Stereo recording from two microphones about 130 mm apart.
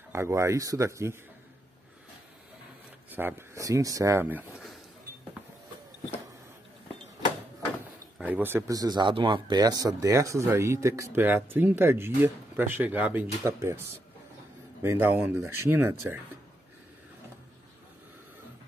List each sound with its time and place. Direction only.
0.1 s speech: 20° right (ahead or behind)
3.1 s speech: 15° right (ahead or behind)
8.2 s speech: 15° right (ahead or behind)
14.8 s speech: 20° right (ahead or behind)